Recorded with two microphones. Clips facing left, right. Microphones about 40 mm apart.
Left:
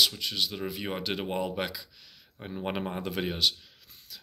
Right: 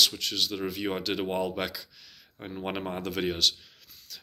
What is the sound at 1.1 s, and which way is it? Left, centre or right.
Speech, centre.